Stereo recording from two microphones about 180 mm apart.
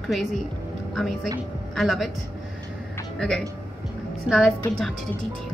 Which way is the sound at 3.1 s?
5° left (ahead or behind).